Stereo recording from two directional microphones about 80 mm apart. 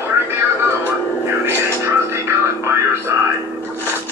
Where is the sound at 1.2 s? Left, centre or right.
Right.